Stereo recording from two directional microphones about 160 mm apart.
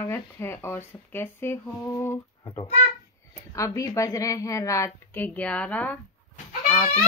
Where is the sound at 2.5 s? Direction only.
40° left (ahead or behind).